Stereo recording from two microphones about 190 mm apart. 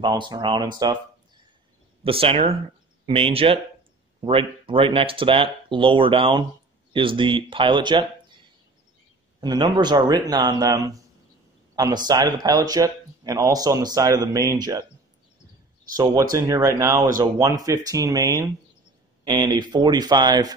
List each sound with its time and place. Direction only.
0.0 s speech: 20° right (ahead or behind)
2.0 s speech: 30° right (ahead or behind)
9.4 s speech: 20° right (ahead or behind)
16.0 s speech: 15° right (ahead or behind)